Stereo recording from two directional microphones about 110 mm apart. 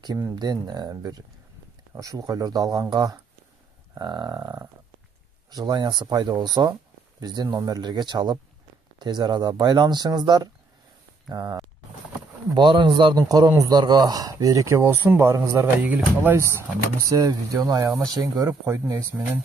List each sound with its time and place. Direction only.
0.4 s speech: 40° right (ahead or behind)
15.8 s speech: 15° right (ahead or behind)